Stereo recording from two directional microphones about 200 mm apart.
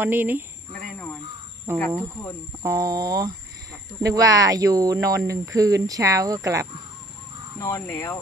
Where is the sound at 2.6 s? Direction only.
15° right (ahead or behind).